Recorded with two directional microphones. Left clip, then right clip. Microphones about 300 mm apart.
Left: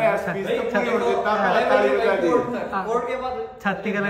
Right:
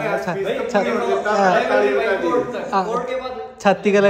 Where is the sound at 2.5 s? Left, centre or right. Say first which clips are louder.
Right 3 dB; centre.